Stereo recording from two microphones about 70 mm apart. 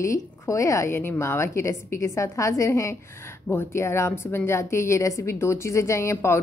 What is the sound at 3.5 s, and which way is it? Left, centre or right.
A woman's voice, left.